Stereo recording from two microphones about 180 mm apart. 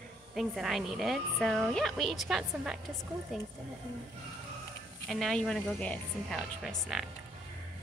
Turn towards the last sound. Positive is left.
turn(degrees=0)  # may be behind; listen again after turning